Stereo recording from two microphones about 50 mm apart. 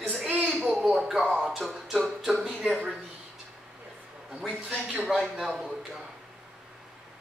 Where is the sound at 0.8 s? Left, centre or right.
Centre.